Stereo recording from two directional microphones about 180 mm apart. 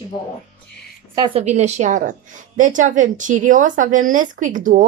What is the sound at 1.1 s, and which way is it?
A woman's voice, 30° right (ahead or behind).